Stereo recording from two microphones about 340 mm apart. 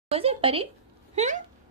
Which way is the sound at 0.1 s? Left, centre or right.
Centre.